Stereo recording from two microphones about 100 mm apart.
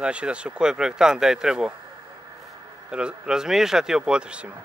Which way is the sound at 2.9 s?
10° right (ahead or behind).